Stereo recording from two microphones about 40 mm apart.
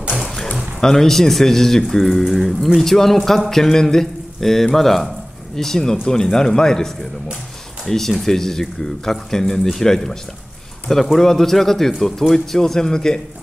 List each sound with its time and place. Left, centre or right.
0.1 s a sound: centre
0.7 s a man's voice: centre
11.1 s speech: centre